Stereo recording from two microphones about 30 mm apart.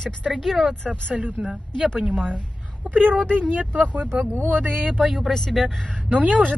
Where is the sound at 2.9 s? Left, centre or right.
Right.